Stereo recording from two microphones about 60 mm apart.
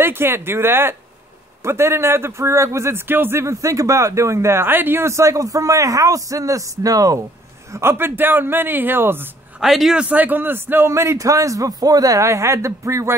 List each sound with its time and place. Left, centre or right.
0.0 s a man's voice: right
3.1 s a man's voice: right
4.6 s a man's voice: right
5.0 s a man's voice: right
7.7 s a man's voice: right
9.6 s a man's voice: centre
9.9 s a man's voice: right
10.9 s a man's voice: right